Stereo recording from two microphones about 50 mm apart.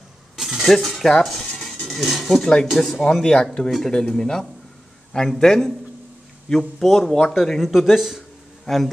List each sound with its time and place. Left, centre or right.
0.4 s cutlery: centre
0.7 s speech: centre
2.7 s speech: centre
3.1 s a man's voice: centre
6.8 s speech: centre
7.7 s a man's voice: centre